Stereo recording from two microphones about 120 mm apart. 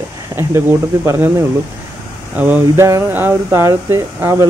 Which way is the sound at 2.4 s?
15° right (ahead or behind).